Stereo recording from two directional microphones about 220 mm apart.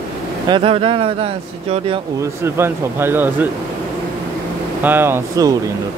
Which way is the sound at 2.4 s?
10° right (ahead or behind).